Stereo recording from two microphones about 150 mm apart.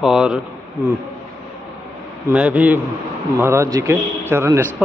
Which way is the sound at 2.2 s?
10° right (ahead or behind).